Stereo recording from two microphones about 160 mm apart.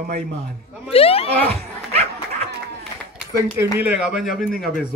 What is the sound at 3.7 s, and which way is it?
Speech, 10° right (ahead or behind).